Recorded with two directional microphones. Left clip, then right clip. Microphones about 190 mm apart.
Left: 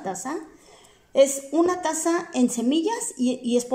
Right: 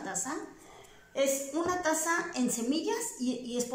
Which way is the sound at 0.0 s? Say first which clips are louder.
Left 6 dB; 50° left (ahead or behind).